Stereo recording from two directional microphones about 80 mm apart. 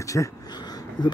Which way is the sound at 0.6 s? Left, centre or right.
Left.